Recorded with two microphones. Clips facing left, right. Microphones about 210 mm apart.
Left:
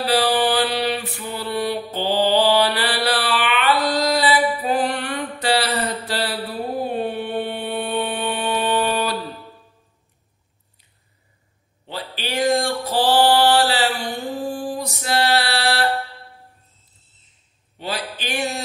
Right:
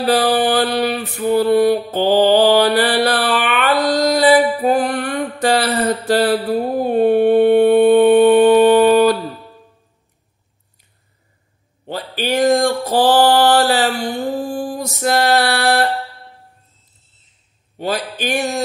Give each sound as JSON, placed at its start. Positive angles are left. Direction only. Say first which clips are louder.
{"t": 0.0, "sound": "mantra", "louder": "right 4 dB", "side_deg": -45}
{"t": 3.9, "sound": "music", "louder": "right 7 dB", "side_deg": -45}
{"t": 5.4, "sound": "a sound", "louder": "right 5 dB", "side_deg": -45}
{"t": 6.8, "sound": "music", "louder": "right 13 dB", "side_deg": -50}
{"t": 11.8, "sound": "music", "louder": "right 7 dB", "side_deg": -45}
{"t": 17.7, "sound": "a sound", "louder": "right 7 dB", "side_deg": -50}